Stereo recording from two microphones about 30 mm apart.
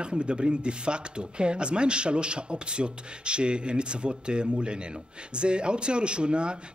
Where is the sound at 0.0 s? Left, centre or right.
Right.